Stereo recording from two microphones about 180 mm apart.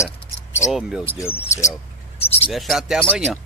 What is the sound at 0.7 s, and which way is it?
Speech, centre (ahead or behind).